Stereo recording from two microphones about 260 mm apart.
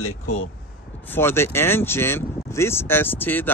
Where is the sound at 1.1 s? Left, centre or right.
Centre.